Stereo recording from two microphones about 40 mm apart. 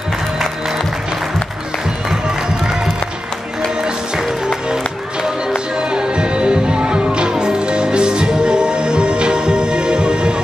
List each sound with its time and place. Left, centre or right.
5.8 s music: right